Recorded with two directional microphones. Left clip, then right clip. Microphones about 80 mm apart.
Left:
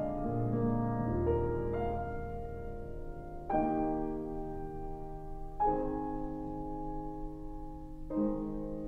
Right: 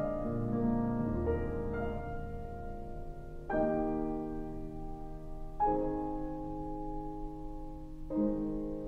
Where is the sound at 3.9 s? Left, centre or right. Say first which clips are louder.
Even; right.